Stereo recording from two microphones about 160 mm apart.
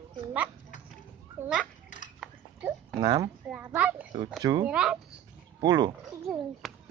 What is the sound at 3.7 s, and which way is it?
Oink, 10° right (ahead or behind).